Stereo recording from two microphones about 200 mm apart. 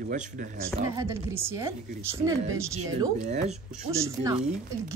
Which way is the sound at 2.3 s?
90° right.